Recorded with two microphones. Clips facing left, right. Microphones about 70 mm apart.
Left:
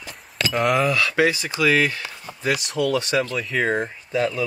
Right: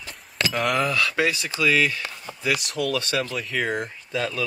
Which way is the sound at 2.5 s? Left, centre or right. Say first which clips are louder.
Left 4 dB; centre.